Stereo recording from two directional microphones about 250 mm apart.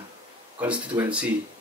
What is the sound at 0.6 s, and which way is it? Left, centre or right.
Speech, centre.